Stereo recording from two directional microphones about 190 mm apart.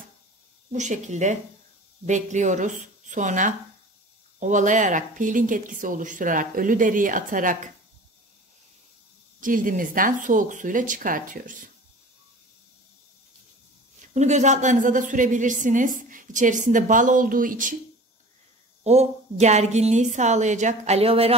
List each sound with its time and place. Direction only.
0.7 s a woman's voice: 40° right (ahead or behind)
9.4 s a woman's voice: 45° right (ahead or behind)
14.1 s a woman's voice: 40° right (ahead or behind)
18.9 s a woman's voice: 35° right (ahead or behind)